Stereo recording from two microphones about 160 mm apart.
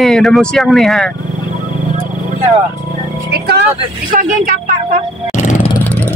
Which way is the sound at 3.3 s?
90° right.